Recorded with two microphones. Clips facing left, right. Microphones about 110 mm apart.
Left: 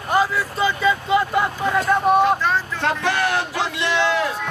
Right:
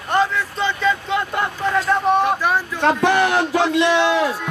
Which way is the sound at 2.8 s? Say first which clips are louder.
Right 7 dB; 20° right (ahead or behind).